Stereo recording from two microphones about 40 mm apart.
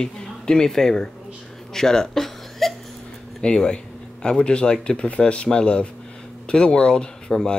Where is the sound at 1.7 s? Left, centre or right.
Centre.